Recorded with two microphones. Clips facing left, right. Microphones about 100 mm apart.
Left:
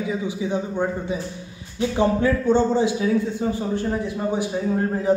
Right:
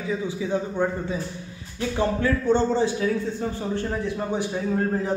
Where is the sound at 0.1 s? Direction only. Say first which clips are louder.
Right 2 dB; 20° left (ahead or behind).